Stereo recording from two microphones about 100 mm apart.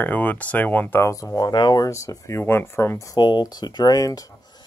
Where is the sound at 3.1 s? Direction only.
45° left (ahead or behind).